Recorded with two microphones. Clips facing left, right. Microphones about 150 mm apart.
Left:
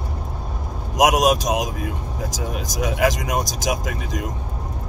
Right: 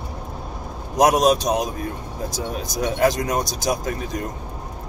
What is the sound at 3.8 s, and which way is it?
Speech, 90° left.